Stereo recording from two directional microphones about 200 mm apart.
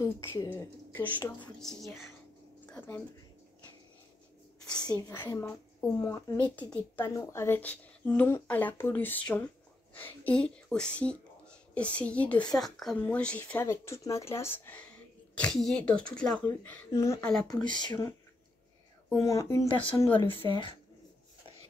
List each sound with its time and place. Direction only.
0.0 s speech: 15° left (ahead or behind)
1.4 s speech: centre (ahead or behind)
4.9 s speech: 10° left (ahead or behind)
17.2 s speech: 5° left (ahead or behind)
17.7 s speech: 20° left (ahead or behind)